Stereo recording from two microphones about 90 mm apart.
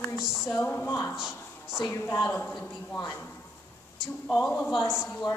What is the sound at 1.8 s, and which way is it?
Speech, 30° left (ahead or behind).